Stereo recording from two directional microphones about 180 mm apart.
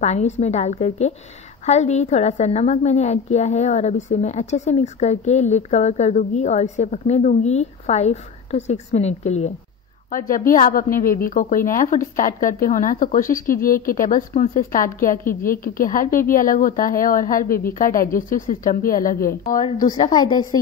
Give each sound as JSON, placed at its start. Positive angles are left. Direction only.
{"t": 0.0, "sound": "a woman's voice", "side_deg": 40}
{"t": 10.1, "sound": "a woman's voice", "side_deg": 50}
{"t": 20.1, "sound": "a woman's voice", "side_deg": 20}